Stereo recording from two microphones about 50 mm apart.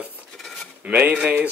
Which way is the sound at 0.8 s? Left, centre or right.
Right.